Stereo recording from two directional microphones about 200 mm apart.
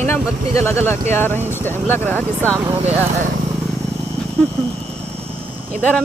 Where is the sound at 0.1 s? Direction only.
10° left (ahead or behind).